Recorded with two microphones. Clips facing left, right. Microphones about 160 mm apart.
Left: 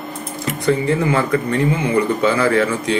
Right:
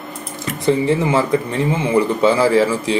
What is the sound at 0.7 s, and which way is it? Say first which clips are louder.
Speech: right 1 dB; 25° right (ahead or behind).